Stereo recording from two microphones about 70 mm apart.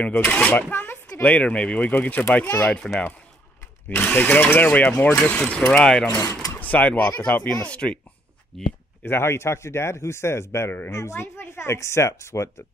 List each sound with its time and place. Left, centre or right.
0.0 s speech: left
2.6 s speech: centre
3.9 s speech: left
6.5 s speech: left
8.5 s speech: centre
9.0 s speech: left